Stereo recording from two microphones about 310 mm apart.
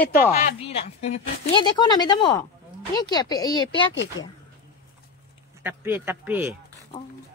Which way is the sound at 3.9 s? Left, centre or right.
Left.